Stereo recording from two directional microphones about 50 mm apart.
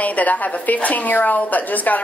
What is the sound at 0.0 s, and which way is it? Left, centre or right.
A woman's voice, left.